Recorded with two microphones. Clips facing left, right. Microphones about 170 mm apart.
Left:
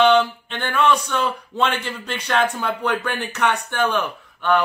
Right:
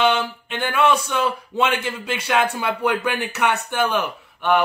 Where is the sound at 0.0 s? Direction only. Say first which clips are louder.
Left 4 dB; 10° right (ahead or behind).